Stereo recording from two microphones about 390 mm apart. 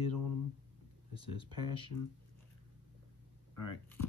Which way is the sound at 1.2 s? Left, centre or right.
Left.